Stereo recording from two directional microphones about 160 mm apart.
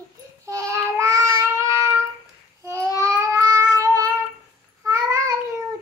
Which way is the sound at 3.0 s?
20° right (ahead or behind).